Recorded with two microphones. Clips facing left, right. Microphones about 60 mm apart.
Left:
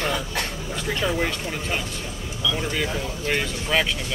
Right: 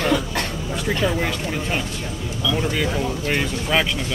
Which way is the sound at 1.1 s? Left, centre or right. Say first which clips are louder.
Right 2 dB; centre.